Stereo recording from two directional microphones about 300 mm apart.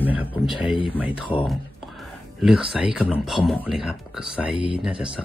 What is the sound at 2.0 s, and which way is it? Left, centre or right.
Whispering, centre.